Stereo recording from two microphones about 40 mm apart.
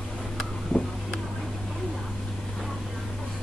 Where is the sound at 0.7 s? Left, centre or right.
Left.